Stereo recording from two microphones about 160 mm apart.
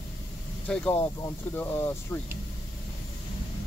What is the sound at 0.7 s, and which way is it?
Speech, 5° left (ahead or behind).